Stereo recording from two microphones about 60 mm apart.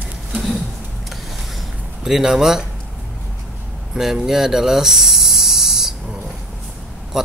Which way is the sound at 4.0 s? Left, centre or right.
Centre.